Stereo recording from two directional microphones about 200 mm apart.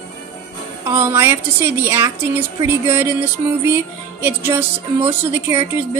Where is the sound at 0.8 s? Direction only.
10° right (ahead or behind).